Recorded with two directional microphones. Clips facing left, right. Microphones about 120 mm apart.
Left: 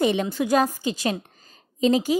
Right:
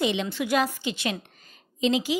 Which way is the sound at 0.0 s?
45° left (ahead or behind).